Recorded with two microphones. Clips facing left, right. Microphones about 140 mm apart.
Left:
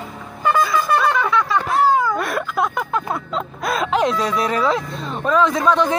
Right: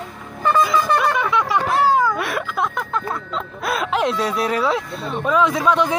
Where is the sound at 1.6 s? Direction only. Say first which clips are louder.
Right 1 dB; centre (ahead or behind).